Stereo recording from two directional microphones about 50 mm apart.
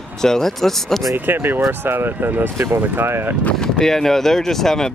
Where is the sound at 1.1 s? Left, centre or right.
Right.